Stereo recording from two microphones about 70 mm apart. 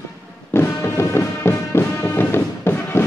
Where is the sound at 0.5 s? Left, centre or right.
Left.